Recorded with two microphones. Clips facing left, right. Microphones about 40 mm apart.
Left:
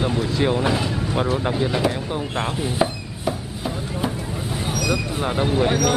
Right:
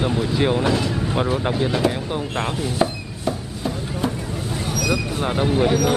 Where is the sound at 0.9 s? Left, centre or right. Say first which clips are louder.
Right 1 dB; centre.